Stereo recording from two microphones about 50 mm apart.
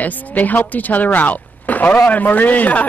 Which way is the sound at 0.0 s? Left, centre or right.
Left.